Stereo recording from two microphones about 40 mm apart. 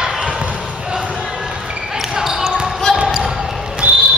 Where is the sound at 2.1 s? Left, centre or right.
Centre.